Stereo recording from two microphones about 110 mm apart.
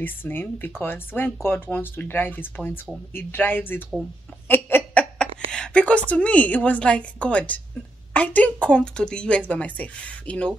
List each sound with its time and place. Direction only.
0.0 s a woman's voice: 20° left (ahead or behind)
4.5 s a sound: 20° left (ahead or behind)
5.2 s a woman's voice: 10° left (ahead or behind)